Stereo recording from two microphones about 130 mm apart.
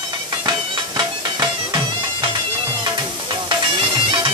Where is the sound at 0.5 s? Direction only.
35° right (ahead or behind).